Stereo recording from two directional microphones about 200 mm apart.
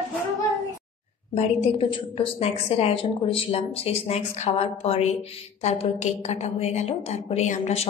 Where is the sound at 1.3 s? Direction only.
30° left (ahead or behind).